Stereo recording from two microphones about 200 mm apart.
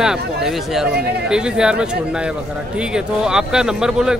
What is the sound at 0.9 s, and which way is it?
Speech, 55° right (ahead or behind).